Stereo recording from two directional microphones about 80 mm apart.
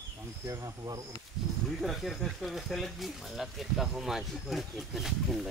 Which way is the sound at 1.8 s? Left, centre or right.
Centre.